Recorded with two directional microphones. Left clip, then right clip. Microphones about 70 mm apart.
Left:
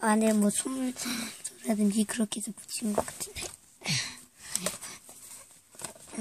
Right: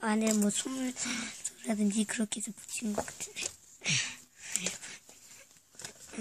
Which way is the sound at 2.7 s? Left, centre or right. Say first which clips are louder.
Left 5 dB; left.